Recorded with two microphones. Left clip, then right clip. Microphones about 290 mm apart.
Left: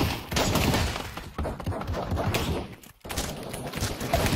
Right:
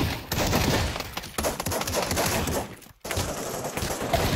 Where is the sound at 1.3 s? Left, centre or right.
Right.